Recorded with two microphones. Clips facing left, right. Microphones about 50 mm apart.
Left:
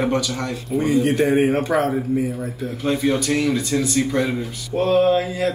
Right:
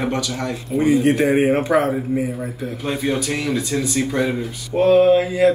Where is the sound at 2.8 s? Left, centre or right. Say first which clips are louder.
Left 2 dB; centre.